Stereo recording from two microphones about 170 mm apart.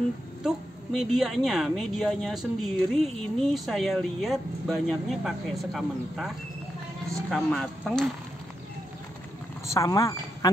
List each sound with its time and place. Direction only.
0.4 s a woman's voice: 5° right (ahead or behind)
9.8 s speech: 20° left (ahead or behind)